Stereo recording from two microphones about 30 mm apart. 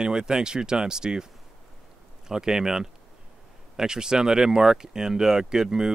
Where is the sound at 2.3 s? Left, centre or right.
Centre.